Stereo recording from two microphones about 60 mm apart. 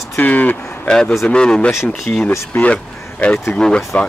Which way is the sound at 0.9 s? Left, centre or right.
Centre.